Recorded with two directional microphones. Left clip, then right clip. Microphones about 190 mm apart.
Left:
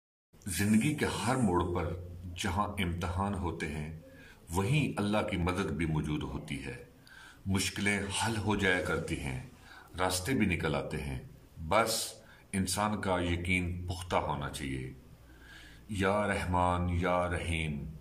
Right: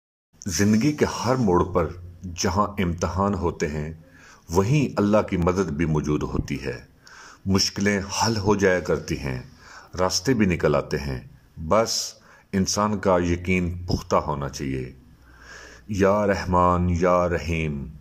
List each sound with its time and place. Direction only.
0.4 s speech: 35° right (ahead or behind)